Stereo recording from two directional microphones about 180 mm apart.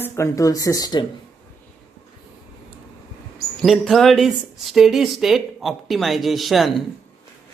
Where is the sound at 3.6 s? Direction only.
Centre (ahead or behind).